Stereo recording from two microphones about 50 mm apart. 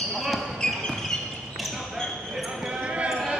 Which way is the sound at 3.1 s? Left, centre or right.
Centre.